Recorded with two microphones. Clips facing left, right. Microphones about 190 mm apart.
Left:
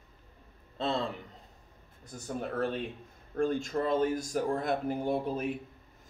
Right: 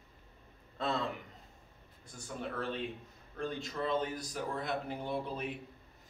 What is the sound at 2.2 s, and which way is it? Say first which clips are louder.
Speech: left 6 dB; 45° left (ahead or behind).